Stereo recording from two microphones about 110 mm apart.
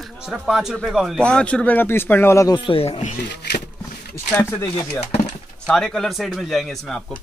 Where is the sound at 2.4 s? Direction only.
50° left (ahead or behind).